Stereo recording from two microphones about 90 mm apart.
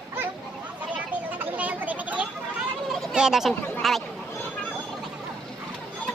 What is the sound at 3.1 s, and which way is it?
Speech, 5° right (ahead or behind).